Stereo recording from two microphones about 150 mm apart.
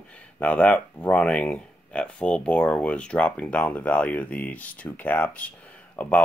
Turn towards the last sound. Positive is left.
turn(degrees=10)  # may be behind; listen again after turning